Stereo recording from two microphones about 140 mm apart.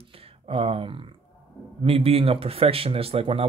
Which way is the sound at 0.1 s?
45° right (ahead or behind).